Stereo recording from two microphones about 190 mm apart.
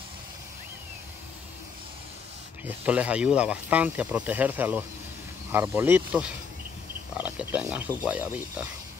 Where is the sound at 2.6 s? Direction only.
10° right (ahead or behind).